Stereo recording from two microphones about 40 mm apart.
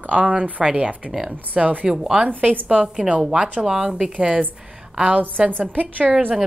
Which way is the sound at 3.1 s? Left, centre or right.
Centre.